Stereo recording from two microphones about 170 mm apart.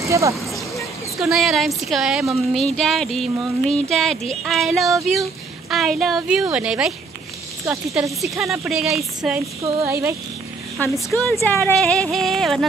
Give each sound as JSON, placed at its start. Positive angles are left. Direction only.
{"t": 0.0, "sound": "speech", "side_deg": -20}
{"t": 1.1, "sound": "speech", "side_deg": 0}
{"t": 8.2, "sound": "speech", "side_deg": 0}
{"t": 9.6, "sound": "speech", "side_deg": -15}
{"t": 10.8, "sound": "speech", "side_deg": 10}